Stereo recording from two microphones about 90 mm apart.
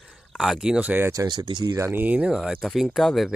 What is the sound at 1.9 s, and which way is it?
Speech, 20° right (ahead or behind).